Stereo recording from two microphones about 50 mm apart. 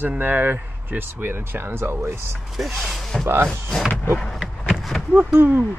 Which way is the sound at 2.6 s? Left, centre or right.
Centre.